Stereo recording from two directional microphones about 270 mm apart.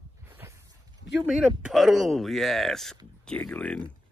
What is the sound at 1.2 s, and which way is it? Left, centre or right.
Speech, centre.